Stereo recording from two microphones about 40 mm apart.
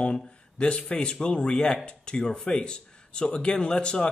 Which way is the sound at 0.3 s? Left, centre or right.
Left.